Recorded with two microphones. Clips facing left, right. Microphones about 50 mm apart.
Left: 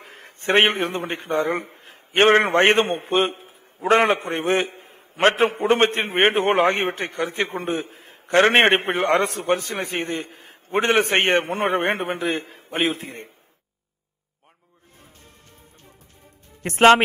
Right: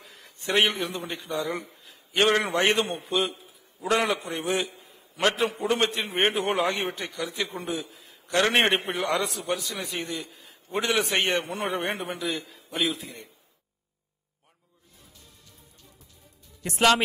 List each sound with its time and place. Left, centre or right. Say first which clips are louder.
0.0 s a man's voice: left 7 dB; left
16.6 s a man's voice: left 8 dB; left